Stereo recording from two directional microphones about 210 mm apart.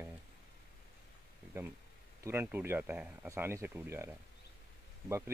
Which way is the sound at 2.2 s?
10° right (ahead or behind).